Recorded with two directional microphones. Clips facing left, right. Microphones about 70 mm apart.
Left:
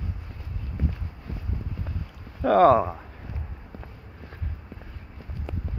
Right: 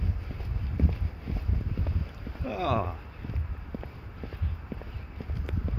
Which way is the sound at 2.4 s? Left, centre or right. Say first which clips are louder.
Left 15 dB; left.